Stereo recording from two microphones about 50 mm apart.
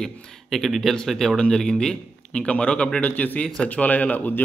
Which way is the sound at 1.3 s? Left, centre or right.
Centre.